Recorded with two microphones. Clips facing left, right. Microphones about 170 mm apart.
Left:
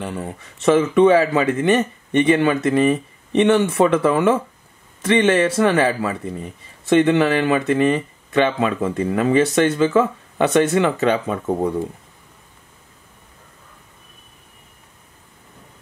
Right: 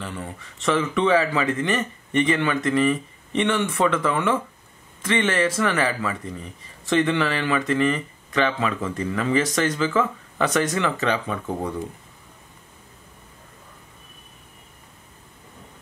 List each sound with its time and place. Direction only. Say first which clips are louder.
0.0 s speech: left 5 dB; 25° left (ahead or behind)